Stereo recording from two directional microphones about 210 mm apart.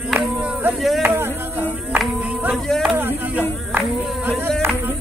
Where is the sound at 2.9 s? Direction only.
10° right (ahead or behind).